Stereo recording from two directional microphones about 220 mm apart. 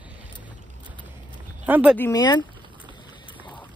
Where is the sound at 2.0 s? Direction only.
15° left (ahead or behind).